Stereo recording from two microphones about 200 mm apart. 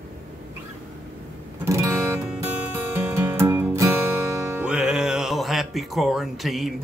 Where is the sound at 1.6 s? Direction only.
15° right (ahead or behind).